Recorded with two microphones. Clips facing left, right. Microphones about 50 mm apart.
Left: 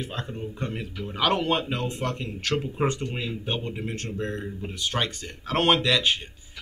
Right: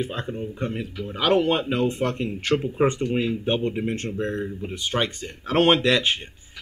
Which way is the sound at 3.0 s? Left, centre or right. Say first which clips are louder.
Right 8 dB; centre.